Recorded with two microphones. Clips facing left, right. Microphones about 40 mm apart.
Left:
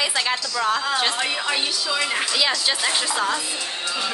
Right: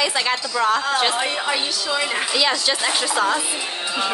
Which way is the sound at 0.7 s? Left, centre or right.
Centre.